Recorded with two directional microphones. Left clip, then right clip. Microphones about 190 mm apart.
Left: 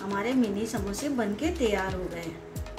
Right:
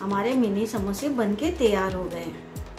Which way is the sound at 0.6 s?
10° right (ahead or behind).